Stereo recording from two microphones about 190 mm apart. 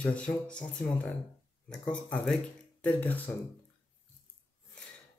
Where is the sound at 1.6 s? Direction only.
5° left (ahead or behind).